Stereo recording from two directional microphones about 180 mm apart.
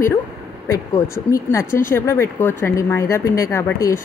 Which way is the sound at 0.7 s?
15° left (ahead or behind).